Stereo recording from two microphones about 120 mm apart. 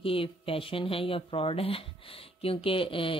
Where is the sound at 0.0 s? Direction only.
50° left (ahead or behind).